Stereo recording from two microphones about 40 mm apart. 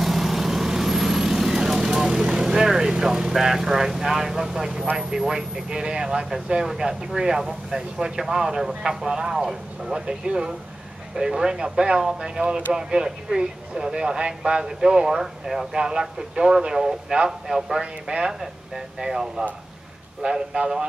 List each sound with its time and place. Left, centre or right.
0.0 s vehicle: centre
4.9 s a man's voice: centre